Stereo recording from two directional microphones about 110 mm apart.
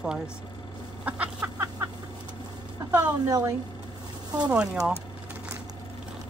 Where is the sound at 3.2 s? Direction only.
30° right (ahead or behind).